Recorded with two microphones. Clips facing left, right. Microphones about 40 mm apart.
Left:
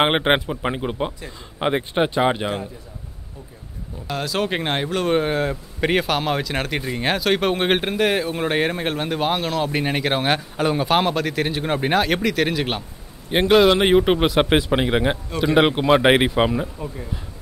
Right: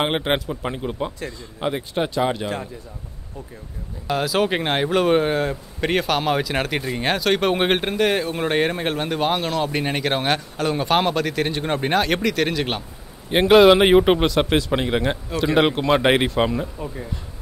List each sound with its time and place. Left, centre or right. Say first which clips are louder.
0.0 s speech: left 4 dB; left
4.1 s speech: right 3 dB; centre
14.2 s speech: left 2 dB; centre